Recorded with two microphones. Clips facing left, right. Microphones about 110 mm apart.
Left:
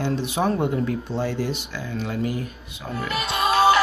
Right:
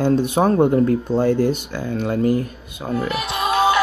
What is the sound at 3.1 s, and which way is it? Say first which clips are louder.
Music: left 3 dB; 10° right (ahead or behind).